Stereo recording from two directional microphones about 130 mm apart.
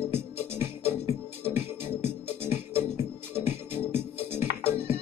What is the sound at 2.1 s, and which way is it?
Music, 15° right (ahead or behind).